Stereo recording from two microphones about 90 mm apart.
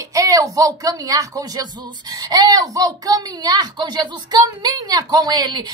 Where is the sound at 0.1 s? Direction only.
40° right (ahead or behind).